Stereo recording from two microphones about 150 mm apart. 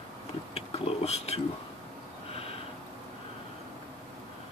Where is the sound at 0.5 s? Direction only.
40° left (ahead or behind).